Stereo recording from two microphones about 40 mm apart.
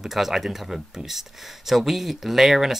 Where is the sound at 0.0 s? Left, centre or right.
Centre.